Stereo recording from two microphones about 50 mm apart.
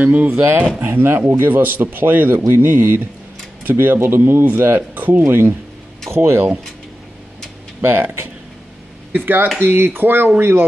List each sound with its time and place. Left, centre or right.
0.0 s speech: right
0.4 s speech: right
2.4 s speech: right
5.2 s speech: right
7.8 s speech: right
9.1 s speech: right